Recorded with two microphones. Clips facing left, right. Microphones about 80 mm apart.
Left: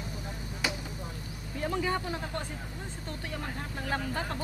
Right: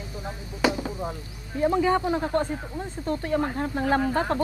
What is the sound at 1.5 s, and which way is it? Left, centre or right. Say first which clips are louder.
Speech: right 9 dB; right.